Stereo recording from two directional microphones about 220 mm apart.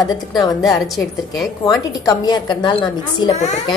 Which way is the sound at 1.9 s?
15° left (ahead or behind).